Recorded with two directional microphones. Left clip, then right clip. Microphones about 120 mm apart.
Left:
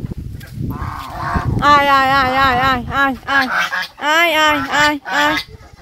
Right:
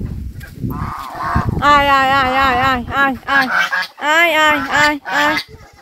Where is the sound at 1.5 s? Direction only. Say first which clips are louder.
Even; 25° left (ahead or behind).